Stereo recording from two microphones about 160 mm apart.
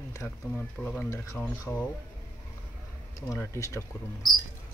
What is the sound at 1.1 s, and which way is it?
Speech, 20° left (ahead or behind).